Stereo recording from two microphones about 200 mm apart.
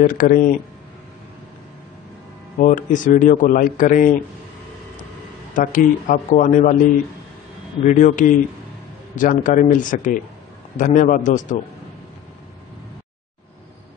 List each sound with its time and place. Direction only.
0.1 s speech: 45° left (ahead or behind)
2.6 s speech: 40° left (ahead or behind)
5.5 s speech: 40° left (ahead or behind)
7.8 s speech: 40° left (ahead or behind)